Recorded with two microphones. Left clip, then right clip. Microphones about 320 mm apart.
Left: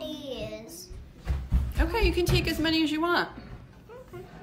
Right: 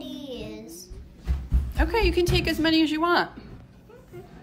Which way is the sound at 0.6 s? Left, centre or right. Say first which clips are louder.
Right 2 dB; centre.